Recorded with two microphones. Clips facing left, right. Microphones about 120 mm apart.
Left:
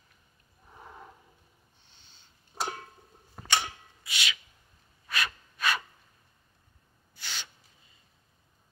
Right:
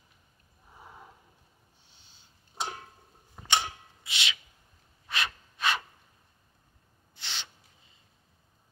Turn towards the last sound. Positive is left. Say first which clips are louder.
# even
turn(degrees=-25)  # may be behind; listen again after turning